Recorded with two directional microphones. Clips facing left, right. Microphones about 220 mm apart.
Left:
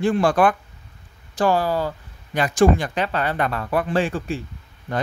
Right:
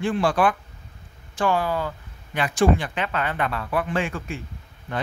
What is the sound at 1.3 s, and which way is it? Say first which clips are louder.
Speech: left 3 dB; 35° left (ahead or behind).